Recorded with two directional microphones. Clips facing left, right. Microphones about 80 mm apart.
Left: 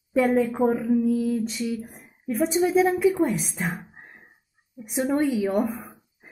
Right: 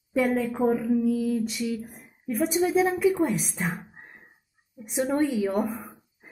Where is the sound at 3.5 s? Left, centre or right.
Centre.